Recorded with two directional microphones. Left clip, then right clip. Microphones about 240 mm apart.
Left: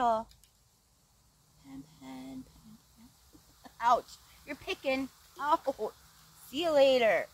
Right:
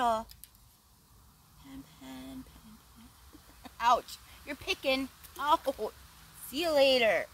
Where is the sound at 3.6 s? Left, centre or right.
Centre.